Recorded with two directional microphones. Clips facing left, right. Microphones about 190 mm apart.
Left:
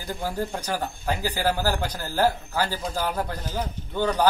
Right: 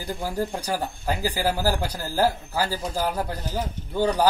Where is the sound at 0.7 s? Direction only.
10° right (ahead or behind).